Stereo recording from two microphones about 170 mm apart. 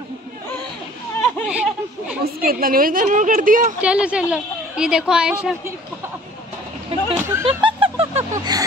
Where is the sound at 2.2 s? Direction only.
60° right (ahead or behind).